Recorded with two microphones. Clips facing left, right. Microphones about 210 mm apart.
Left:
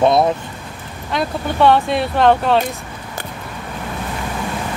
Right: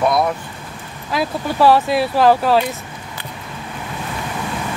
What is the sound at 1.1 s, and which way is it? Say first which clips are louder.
Speech: even; 5° right (ahead or behind).